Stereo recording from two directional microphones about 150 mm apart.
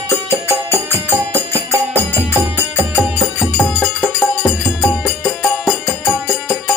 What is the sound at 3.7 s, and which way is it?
Music, 10° left (ahead or behind).